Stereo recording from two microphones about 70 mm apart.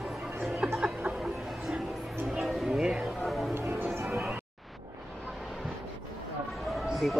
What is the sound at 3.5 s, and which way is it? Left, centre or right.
Music, right.